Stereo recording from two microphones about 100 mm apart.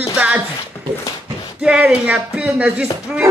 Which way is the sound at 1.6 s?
10° right (ahead or behind).